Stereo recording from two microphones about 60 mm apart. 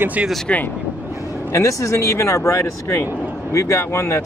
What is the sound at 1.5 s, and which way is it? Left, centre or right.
Speech, left.